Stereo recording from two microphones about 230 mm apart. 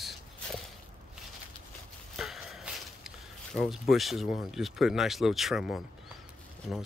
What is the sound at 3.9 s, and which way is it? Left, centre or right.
Speech, centre.